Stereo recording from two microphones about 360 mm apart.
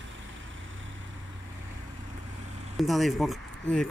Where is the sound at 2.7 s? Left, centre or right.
Centre.